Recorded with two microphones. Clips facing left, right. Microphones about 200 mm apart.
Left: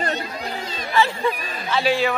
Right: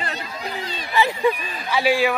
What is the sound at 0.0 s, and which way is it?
Run, 45° left (ahead or behind).